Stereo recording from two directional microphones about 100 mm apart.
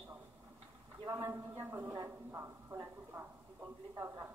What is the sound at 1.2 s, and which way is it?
Speech, 30° right (ahead or behind).